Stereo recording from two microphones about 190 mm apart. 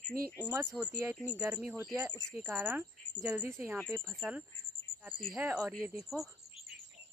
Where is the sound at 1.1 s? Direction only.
5° right (ahead or behind).